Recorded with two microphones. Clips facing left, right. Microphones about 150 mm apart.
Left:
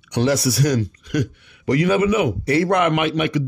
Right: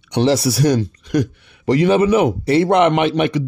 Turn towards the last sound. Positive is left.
turn(degrees=-30)  # may be behind; listen again after turning